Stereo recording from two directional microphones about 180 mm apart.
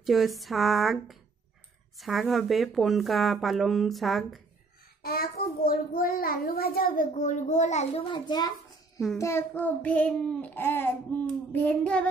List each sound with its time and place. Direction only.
0.0 s speech: centre (ahead or behind)
5.0 s a child's voice: 55° left (ahead or behind); by 9.0 s 20° left (ahead or behind)
9.2 s child singing: 15° left (ahead or behind)